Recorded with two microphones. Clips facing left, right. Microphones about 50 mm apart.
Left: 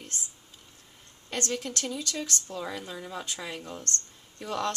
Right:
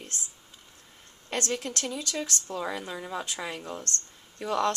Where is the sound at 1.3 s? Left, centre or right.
Right.